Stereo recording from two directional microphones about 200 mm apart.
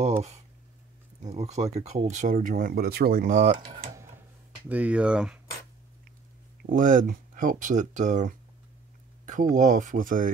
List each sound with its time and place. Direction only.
1.2 s speech: 35° right (ahead or behind)
3.9 s a sound: 15° right (ahead or behind)
4.6 s speech: 5° right (ahead or behind)
6.6 s speech: 40° right (ahead or behind)
9.2 s a sound: 40° right (ahead or behind)
9.6 s speech: 35° right (ahead or behind)